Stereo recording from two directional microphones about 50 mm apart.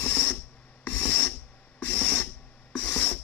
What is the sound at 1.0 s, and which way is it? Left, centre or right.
Filing, left.